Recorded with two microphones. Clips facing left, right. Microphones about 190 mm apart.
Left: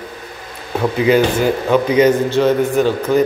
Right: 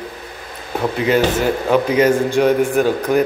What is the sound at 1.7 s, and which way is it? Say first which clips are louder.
A man's voice: left 2 dB; 5° right (ahead or behind).